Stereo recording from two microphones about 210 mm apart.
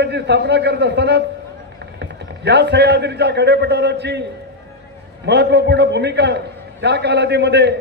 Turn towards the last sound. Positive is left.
turn(degrees=-55)  # may be behind; listen again after turning